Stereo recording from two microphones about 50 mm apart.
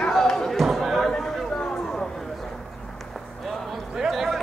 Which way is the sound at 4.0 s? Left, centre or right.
Centre.